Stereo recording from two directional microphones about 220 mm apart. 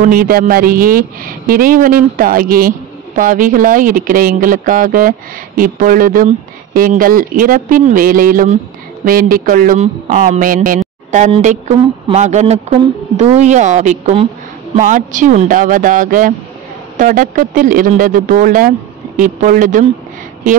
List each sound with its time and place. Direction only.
0.0 s speech: 40° right (ahead or behind)